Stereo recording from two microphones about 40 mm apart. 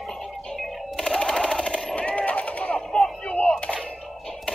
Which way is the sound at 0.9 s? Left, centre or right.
Centre.